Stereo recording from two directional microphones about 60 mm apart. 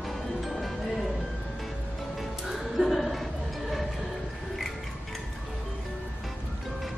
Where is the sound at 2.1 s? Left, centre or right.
Centre.